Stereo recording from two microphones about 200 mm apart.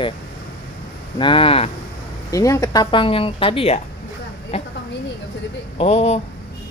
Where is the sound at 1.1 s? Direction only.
25° left (ahead or behind).